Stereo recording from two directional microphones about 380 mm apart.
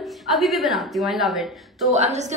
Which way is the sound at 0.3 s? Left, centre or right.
Centre.